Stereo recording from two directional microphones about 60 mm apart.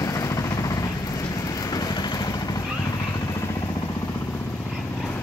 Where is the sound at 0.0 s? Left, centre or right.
Left.